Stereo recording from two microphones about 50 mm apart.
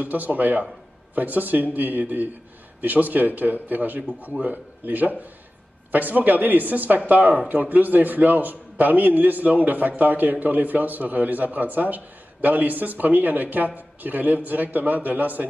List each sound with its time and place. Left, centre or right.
0.0 s a man's voice: right